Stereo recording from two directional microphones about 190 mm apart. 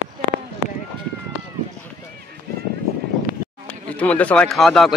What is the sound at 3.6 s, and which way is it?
Speech, 5° left (ahead or behind).